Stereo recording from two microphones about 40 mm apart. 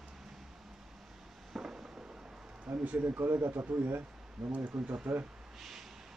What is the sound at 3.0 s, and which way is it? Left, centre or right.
Speech, right.